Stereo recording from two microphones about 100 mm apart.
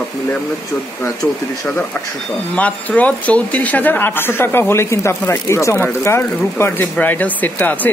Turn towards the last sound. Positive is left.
turn(degrees=15)  # may be behind; listen again after turning